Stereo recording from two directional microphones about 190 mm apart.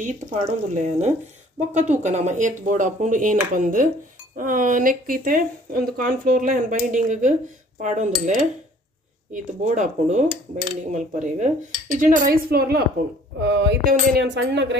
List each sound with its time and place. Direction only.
0.0 s speech: 35° right (ahead or behind)
12.4 s speech: 55° right (ahead or behind)
13.4 s speech: 65° right (ahead or behind)